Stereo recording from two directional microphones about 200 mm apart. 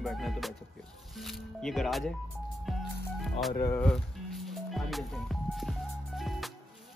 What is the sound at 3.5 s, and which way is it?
Music, 10° left (ahead or behind).